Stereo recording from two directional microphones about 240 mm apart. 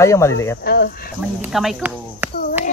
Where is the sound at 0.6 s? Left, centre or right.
Left.